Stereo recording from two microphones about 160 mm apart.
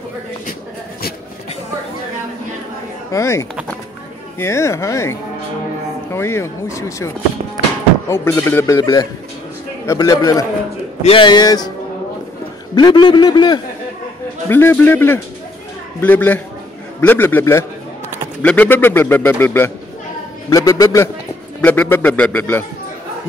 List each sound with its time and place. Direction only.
3.1 s a man's voice: 20° left (ahead or behind)
6.1 s a man's voice: 15° left (ahead or behind)
8.1 s a man's voice: 15° left (ahead or behind)
11.0 s a man's voice: 35° left (ahead or behind)
12.7 s a man's voice: 30° left (ahead or behind)
14.5 s a man's voice: 15° left (ahead or behind)